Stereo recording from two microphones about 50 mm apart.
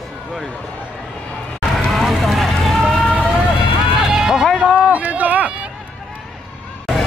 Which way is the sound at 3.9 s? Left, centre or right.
Centre.